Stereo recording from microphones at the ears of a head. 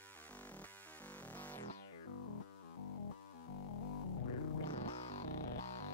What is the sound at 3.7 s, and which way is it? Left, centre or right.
Music, left.